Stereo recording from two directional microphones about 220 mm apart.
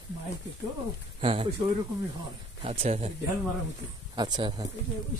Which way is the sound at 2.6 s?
30° right (ahead or behind).